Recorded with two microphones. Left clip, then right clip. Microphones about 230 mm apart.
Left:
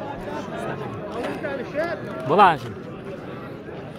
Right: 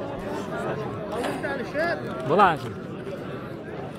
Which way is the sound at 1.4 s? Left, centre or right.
Right.